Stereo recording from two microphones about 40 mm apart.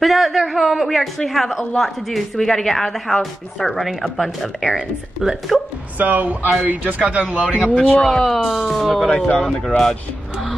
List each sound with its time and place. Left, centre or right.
0.0 s a woman's voice: centre
5.2 s speech: centre
5.9 s speech: right
8.0 s a woman's voice: centre
9.3 s speech: left
9.7 s speech: centre